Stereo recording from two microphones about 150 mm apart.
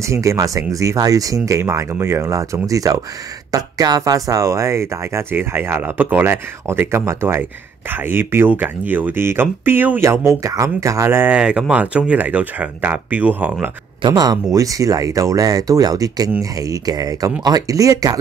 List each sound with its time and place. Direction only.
0.0 s speech: 20° right (ahead or behind)
14.0 s speech: 25° right (ahead or behind)